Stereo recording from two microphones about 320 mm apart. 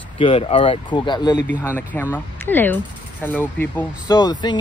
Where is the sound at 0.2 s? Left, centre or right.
Centre.